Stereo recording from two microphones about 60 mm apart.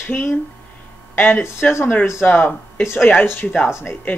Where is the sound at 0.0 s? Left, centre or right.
Left.